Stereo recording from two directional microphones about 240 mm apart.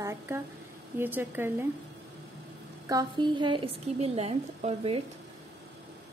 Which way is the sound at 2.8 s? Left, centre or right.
Centre.